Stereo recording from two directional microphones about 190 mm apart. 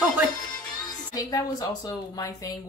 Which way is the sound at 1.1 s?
20° left (ahead or behind).